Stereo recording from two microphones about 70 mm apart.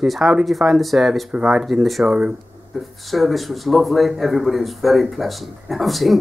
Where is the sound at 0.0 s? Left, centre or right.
Centre.